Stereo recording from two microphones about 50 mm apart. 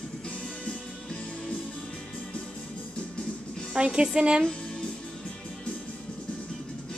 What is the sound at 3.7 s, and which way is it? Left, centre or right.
Speech, centre.